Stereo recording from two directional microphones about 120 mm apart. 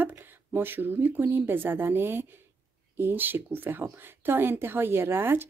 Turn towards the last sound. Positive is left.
turn(degrees=-20)  # may be behind; listen again after turning